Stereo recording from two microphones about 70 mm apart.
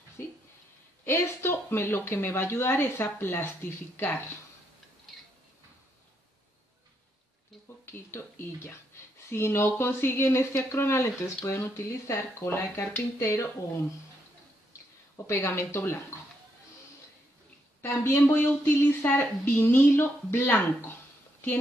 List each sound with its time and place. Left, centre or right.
1.0 s speech: left
7.8 s speech: left
15.2 s speech: left
17.8 s speech: left